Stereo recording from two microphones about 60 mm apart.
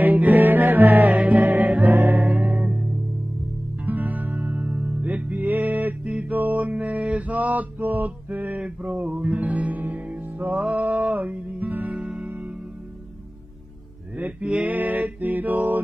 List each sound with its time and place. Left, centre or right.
0.0 s music: right
2.1 s music: centre
3.8 s music: right
6.1 s mantra: right
8.6 s music: right
14.1 s a sound: right
14.6 s music: right